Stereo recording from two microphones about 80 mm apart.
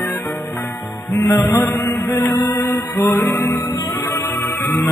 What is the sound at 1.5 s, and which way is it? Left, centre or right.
Music, left.